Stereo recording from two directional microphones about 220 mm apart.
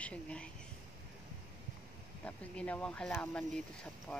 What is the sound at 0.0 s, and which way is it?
Speech, 5° left (ahead or behind).